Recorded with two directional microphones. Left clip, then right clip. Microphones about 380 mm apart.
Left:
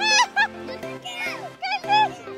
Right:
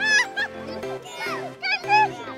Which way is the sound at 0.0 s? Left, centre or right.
Centre.